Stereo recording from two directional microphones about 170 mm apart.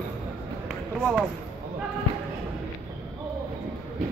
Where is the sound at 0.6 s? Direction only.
5° left (ahead or behind).